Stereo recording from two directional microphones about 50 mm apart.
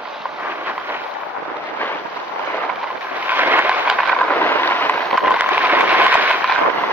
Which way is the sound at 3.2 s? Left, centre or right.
Right.